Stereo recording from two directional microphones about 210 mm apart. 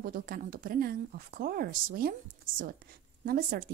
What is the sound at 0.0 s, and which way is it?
Speech, 45° right (ahead or behind).